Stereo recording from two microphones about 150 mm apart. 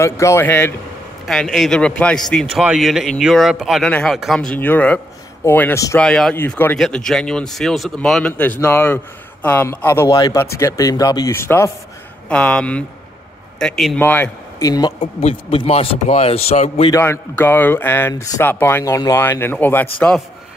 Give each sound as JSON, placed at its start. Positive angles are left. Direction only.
{"t": 0.0, "sound": "speech", "side_deg": 20}
{"t": 1.2, "sound": "speech", "side_deg": 0}
{"t": 2.5, "sound": "speech", "side_deg": -5}
{"t": 5.9, "sound": "speech", "side_deg": 5}
{"t": 6.3, "sound": "a man's voice", "side_deg": 15}
{"t": 14.7, "sound": "speech", "side_deg": 30}
{"t": 15.5, "sound": "a man's voice", "side_deg": 40}
{"t": 16.9, "sound": "speech", "side_deg": 15}